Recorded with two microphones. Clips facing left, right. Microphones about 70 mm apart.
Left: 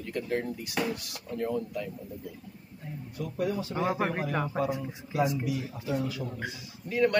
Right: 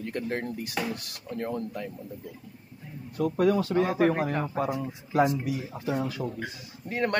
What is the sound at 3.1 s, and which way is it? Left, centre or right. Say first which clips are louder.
Speech: right 8 dB; right.